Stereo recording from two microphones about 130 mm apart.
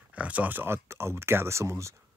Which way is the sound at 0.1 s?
10° right (ahead or behind).